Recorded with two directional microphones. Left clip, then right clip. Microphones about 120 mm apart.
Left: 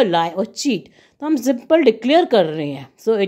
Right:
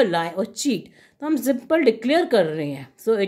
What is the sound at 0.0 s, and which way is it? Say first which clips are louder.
Speech: left 4 dB; 40° left (ahead or behind).